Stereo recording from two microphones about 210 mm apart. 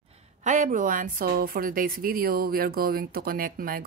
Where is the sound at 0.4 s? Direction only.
35° right (ahead or behind).